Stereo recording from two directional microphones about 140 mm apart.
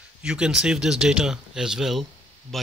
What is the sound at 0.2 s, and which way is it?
Speech, 5° right (ahead or behind).